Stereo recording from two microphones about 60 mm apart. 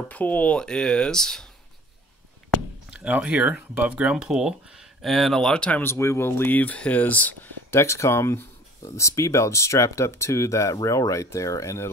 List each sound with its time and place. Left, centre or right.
0.1 s speech: left
0.6 s speech: centre
2.9 s speech: centre
5.0 s speech: centre
5.9 s speech: left
7.7 s speech: left